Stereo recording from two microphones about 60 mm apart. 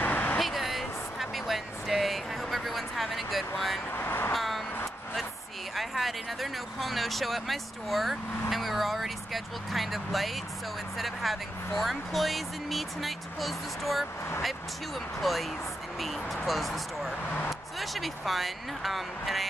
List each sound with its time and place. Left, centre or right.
0.0 s vehicle: left
0.4 s a sound: centre
3.9 s speech: left
4.3 s vehicle: centre
5.8 s speech: centre
15.1 s speech: centre